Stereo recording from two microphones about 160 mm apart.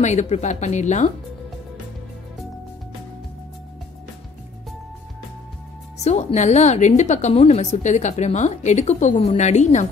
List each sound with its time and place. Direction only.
0.0 s a woman's voice: 45° left (ahead or behind)
5.9 s a woman's voice: 45° left (ahead or behind)